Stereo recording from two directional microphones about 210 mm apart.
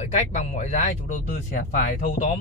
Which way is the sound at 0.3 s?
35° left (ahead or behind).